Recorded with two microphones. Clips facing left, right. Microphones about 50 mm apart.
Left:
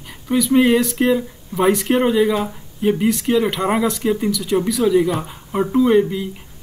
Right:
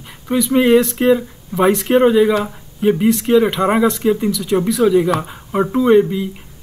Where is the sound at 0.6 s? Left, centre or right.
Centre.